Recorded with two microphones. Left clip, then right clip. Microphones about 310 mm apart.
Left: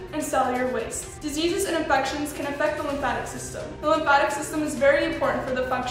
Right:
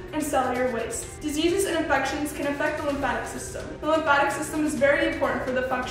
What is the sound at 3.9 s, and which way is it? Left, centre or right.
A woman's voice, centre.